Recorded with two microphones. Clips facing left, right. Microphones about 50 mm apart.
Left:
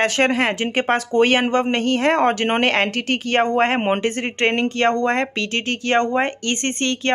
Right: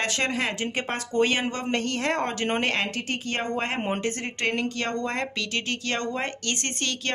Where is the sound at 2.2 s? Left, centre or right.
Left.